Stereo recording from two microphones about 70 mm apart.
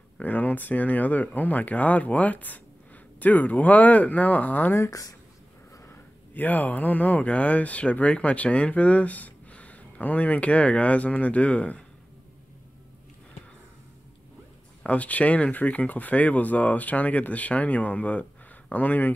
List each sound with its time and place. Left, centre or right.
0.2 s speech: left
4.8 s speech: left
6.3 s speech: left
14.8 s speech: left